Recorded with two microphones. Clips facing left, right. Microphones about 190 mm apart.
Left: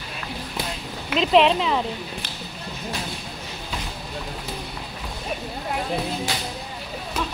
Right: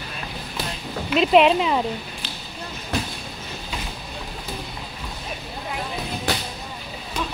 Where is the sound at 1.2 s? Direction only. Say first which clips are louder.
Right 1 dB; 5° right (ahead or behind).